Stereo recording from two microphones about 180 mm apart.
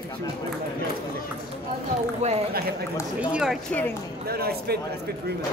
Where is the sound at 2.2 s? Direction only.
40° right (ahead or behind).